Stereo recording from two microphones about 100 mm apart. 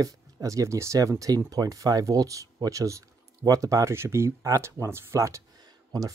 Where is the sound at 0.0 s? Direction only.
35° right (ahead or behind).